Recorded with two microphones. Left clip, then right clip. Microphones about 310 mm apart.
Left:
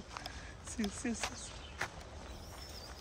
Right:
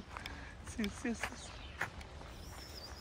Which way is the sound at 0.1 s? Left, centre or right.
Centre.